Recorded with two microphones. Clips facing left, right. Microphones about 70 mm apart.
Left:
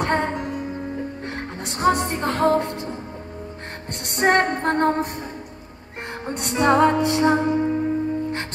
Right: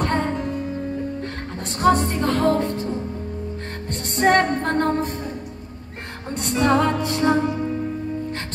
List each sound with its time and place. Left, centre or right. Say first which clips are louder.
0.0 s music: even; left
1.8 s music: right 2 dB; centre
4.2 s music: right 1 dB; centre
6.2 s music: left 1 dB; centre